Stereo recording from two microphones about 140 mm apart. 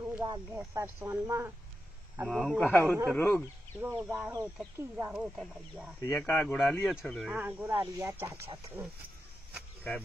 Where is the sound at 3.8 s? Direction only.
15° right (ahead or behind).